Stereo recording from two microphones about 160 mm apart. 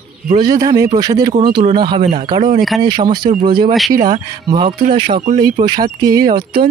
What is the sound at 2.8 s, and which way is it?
Speech, 30° right (ahead or behind).